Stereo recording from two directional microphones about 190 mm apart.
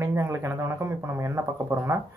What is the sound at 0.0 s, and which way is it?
Speech, 15° right (ahead or behind).